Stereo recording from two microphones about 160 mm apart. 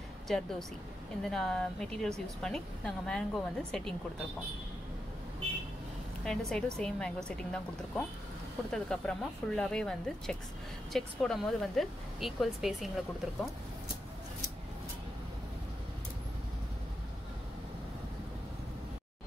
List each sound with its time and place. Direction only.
0.3 s speech: centre (ahead or behind)
6.2 s speech: 5° left (ahead or behind)